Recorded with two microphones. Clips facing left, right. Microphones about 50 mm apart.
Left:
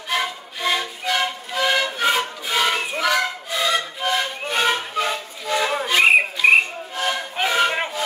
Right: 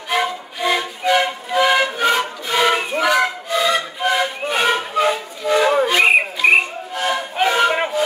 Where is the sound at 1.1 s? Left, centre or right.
Right.